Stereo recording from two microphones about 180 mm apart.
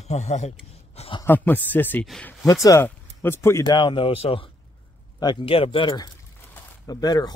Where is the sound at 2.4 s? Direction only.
20° left (ahead or behind).